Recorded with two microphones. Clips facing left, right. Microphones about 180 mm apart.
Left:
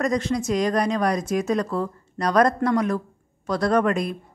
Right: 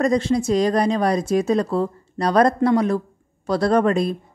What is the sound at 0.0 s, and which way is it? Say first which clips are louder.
Speech: right 4 dB; 30° right (ahead or behind).